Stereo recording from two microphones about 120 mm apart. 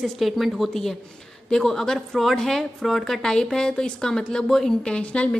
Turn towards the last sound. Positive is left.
turn(degrees=10)  # may be behind; listen again after turning